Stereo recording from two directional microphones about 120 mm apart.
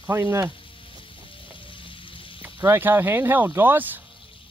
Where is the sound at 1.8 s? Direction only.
45° left (ahead or behind).